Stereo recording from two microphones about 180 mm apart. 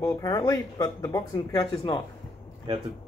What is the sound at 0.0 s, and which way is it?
Speech, 20° left (ahead or behind).